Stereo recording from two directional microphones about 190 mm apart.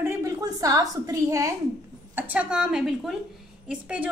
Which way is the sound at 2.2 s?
5° right (ahead or behind).